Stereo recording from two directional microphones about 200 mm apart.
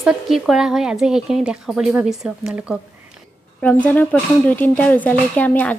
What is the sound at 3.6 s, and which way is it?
A woman's voice, 5° left (ahead or behind).